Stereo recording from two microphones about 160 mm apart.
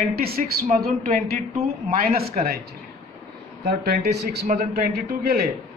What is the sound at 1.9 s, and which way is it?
Speech, 70° right (ahead or behind).